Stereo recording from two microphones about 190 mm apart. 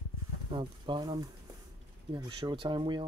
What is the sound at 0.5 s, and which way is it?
Speech, 25° right (ahead or behind).